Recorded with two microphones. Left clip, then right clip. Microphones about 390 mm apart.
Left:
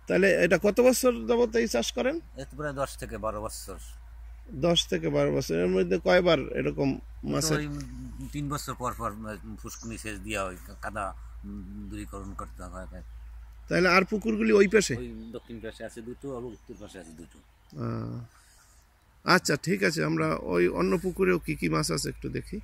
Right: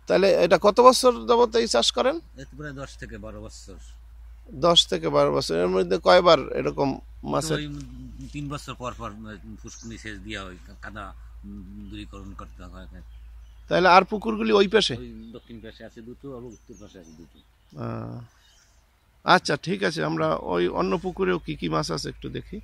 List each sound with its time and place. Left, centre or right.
0.2 s speech: centre
1.1 s speech: right
1.5 s speech: centre
2.4 s speech: centre
4.7 s speech: centre
6.7 s speech: right
7.2 s speech: centre
15.0 s speech: left
17.7 s speech: centre
19.2 s speech: centre